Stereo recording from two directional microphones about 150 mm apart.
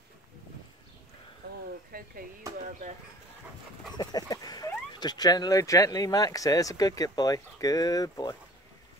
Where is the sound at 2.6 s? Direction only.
55° right (ahead or behind).